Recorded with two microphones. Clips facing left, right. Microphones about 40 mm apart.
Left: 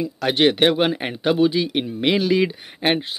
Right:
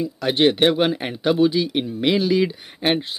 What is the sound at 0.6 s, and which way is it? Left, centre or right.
Speech, left.